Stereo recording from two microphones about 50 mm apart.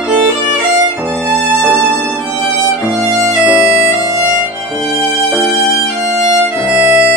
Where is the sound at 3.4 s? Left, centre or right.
Right.